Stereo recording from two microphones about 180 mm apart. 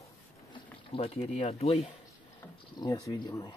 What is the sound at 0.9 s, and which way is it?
Speech, 35° left (ahead or behind).